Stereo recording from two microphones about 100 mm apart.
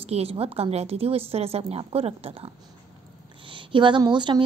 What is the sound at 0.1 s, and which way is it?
A woman's voice, 85° right.